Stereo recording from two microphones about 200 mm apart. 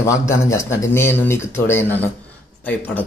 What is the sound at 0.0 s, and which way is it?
A man's voice, 15° left (ahead or behind).